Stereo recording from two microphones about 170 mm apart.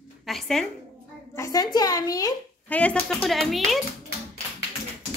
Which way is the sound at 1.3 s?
20° left (ahead or behind).